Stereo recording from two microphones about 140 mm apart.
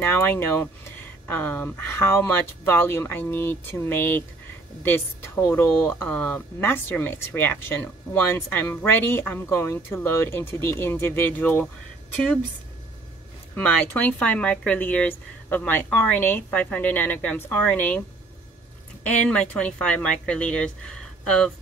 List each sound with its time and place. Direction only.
0.1 s speech: 15° left (ahead or behind)
13.6 s speech: 10° left (ahead or behind)
19.0 s speech: 10° left (ahead or behind)